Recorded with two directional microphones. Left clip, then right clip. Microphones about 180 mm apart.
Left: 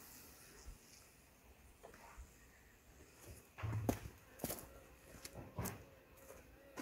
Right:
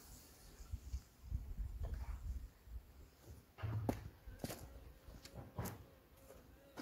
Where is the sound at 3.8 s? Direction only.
35° left (ahead or behind).